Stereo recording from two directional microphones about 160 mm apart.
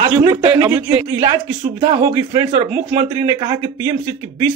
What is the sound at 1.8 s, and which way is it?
Speech, 25° right (ahead or behind).